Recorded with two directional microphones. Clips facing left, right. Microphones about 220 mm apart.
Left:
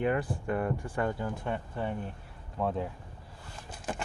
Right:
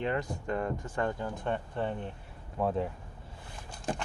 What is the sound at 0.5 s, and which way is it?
Speech, 10° left (ahead or behind).